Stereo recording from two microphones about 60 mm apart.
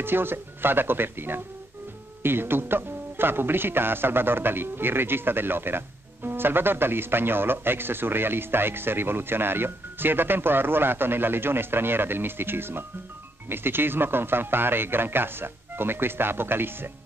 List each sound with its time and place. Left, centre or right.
0.0 s speech: right